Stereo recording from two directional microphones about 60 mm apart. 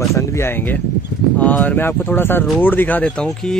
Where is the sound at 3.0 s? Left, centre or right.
Centre.